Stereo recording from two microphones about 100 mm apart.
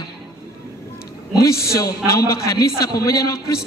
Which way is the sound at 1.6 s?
30° left (ahead or behind).